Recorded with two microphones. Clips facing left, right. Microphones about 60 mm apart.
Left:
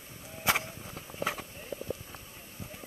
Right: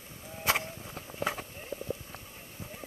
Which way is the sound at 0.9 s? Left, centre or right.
Right.